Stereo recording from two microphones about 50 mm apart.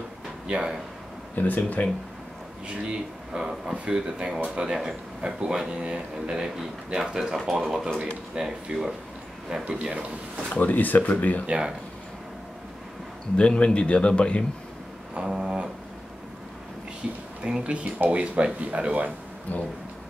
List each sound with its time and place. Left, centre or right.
0.5 s speech: centre
1.3 s speech: left
3.3 s speech: centre
7.3 s speech: centre
8.0 s speech: centre
9.7 s speech: right
10.5 s speech: left
11.4 s speech: right
13.4 s speech: left
15.1 s speech: centre
17.0 s speech: centre
19.5 s speech: left